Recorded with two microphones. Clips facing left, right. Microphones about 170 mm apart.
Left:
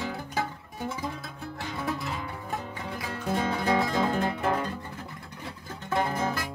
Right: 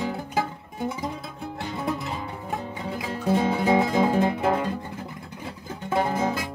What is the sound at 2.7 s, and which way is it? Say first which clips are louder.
Music: right 4 dB; 20° right (ahead or behind).